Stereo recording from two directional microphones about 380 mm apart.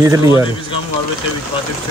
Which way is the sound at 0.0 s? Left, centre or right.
Centre.